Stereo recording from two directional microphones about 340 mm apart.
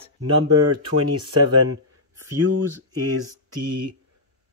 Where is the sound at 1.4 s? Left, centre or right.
Right.